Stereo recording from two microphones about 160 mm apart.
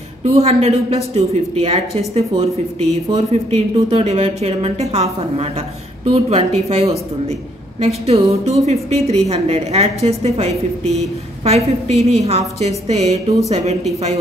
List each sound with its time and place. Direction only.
0.2 s a woman's voice: 40° right (ahead or behind)